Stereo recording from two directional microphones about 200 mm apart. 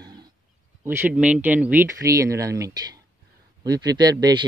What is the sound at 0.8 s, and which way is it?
Speech, 10° right (ahead or behind).